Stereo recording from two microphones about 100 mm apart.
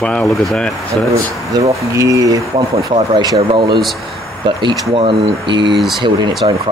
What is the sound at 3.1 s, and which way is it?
Speech, 50° right (ahead or behind).